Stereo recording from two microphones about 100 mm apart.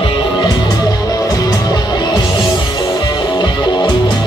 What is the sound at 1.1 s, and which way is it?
Music, 40° left (ahead or behind).